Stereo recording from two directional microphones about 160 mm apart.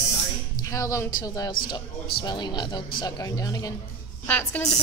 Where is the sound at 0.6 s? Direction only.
20° left (ahead or behind).